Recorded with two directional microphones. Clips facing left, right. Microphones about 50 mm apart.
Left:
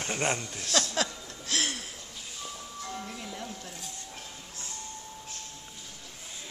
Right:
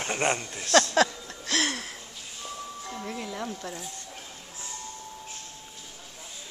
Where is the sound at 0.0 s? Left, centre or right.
Right.